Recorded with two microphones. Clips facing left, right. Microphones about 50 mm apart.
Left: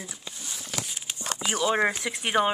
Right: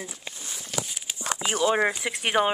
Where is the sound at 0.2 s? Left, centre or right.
Right.